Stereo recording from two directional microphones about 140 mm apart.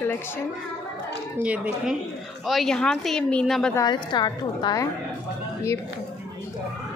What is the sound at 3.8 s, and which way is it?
A woman's voice, 30° left (ahead or behind).